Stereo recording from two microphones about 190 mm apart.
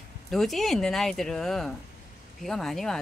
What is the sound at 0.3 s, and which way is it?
Speech, centre (ahead or behind).